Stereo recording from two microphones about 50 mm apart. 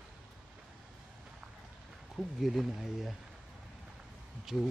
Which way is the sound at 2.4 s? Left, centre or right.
Centre.